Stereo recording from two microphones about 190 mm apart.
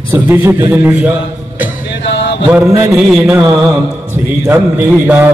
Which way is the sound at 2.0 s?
70° left (ahead or behind).